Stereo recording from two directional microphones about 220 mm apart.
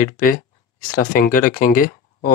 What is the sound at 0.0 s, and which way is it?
Speech, 40° left (ahead or behind).